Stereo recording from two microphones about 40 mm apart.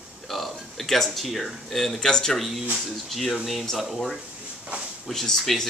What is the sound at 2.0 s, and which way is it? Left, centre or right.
Speech, centre.